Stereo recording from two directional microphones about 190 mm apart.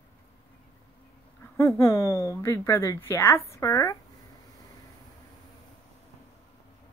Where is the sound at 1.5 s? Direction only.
15° left (ahead or behind).